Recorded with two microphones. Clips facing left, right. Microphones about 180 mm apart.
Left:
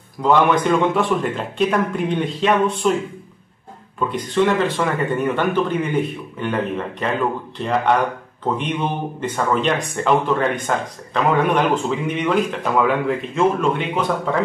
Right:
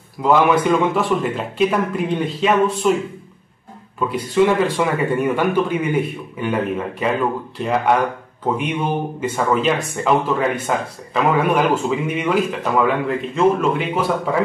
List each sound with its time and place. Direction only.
0.2 s speech: 5° right (ahead or behind)
4.0 s speech: 5° right (ahead or behind)